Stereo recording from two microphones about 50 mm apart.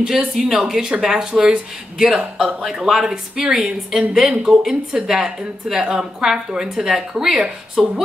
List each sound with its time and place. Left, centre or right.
0.4 s speech: centre
7.8 s speech: centre